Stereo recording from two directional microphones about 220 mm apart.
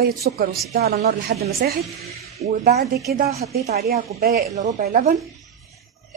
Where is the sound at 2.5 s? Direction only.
40° right (ahead or behind).